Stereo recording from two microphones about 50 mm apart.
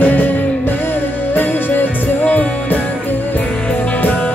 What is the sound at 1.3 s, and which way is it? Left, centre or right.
Music, left.